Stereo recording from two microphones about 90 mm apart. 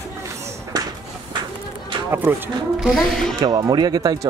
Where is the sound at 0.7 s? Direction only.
45° right (ahead or behind).